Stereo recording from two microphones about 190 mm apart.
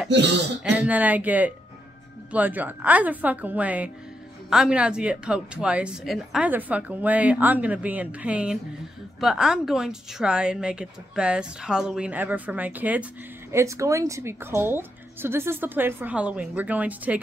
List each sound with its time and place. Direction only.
0.1 s speech: 65° right (ahead or behind)
0.7 s a woman's voice: 5° right (ahead or behind)